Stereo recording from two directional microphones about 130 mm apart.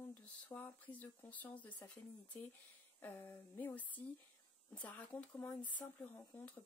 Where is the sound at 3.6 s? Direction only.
10° left (ahead or behind).